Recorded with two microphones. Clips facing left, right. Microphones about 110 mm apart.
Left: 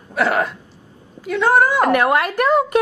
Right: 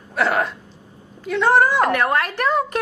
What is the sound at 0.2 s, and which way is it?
A woman's voice, centre (ahead or behind).